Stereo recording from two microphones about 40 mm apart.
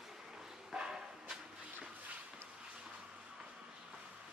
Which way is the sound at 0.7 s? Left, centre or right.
Centre.